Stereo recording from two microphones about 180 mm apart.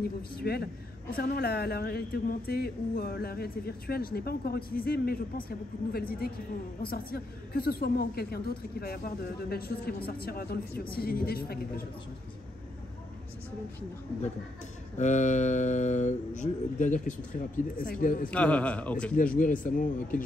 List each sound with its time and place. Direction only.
0.4 s a woman's voice: 60° left (ahead or behind)
15.0 s speech: 40° left (ahead or behind)
18.3 s a man's voice: 5° left (ahead or behind)
19.3 s speech: 45° left (ahead or behind)